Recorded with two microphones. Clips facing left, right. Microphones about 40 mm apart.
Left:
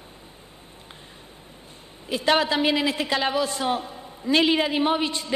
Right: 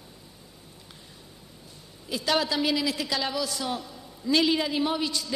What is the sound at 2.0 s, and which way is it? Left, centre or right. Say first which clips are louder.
A man's voice: left 5 dB; left.